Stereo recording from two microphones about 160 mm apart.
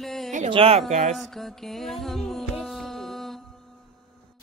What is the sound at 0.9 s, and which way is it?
Speech, 50° right (ahead or behind).